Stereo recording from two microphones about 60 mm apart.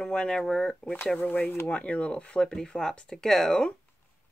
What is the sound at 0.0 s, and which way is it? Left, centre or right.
Speech, centre.